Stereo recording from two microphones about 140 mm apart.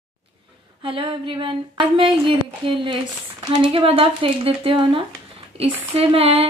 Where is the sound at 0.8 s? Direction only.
40° right (ahead or behind).